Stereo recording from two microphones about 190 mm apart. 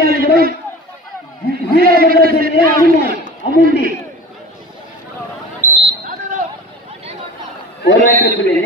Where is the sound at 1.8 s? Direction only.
50° right (ahead or behind).